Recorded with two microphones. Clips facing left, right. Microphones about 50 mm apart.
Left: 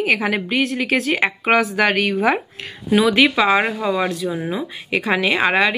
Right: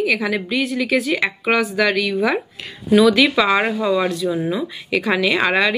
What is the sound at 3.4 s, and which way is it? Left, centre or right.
Speech, centre.